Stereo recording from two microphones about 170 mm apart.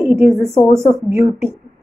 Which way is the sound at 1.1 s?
15° right (ahead or behind).